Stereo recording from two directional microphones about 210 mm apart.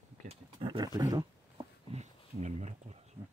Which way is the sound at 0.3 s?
25° right (ahead or behind).